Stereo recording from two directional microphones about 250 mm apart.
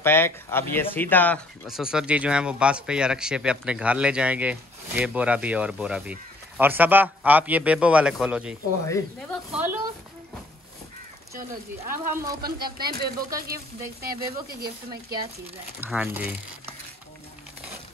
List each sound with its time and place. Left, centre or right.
0.0 s speech: centre
8.8 s speech: centre
9.5 s speech: centre
12.0 s speech: right
15.8 s speech: centre